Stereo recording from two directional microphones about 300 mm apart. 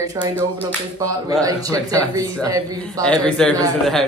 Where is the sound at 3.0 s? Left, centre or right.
Centre.